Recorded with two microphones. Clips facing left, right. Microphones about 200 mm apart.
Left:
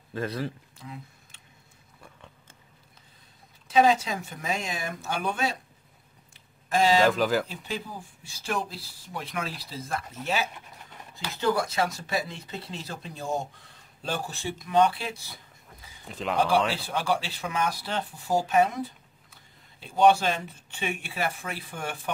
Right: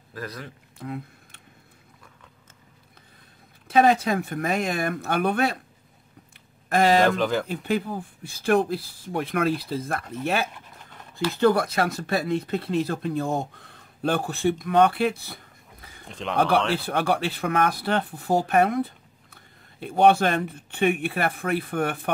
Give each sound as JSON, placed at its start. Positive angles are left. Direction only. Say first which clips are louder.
{"t": 0.1, "sound": "speech", "louder": "left 5 dB", "side_deg": 25}
{"t": 0.7, "sound": "a sound", "louder": "right 9 dB", "side_deg": -60}
{"t": 3.6, "sound": "speech", "louder": "right 3 dB", "side_deg": -60}
{"t": 6.7, "sound": "speech", "louder": "right 3 dB", "side_deg": -60}
{"t": 7.1, "sound": "speech", "louder": "right 1 dB", "side_deg": 0}
{"t": 7.4, "sound": "speech", "louder": "right 9 dB", "side_deg": -60}
{"t": 16.1, "sound": "speech", "louder": "even", "side_deg": 0}
{"t": 16.3, "sound": "speech", "louder": "right 3 dB", "side_deg": -60}